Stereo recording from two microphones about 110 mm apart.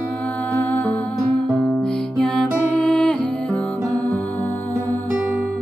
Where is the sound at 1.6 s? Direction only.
5° left (ahead or behind).